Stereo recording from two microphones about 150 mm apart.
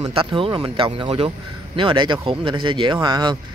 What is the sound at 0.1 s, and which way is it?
Speech, 35° right (ahead or behind).